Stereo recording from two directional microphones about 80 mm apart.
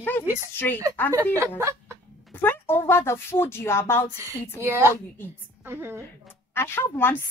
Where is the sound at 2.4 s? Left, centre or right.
Left.